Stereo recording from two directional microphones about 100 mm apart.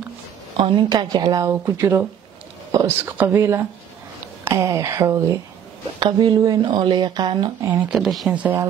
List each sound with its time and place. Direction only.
0.6 s a woman's voice: 70° right (ahead or behind)
0.8 s speech: 40° right (ahead or behind)
5.9 s speech: 50° right (ahead or behind)
7.6 s speech: 15° right (ahead or behind)
8.0 s speech: centre (ahead or behind)
8.3 s speech: 15° right (ahead or behind)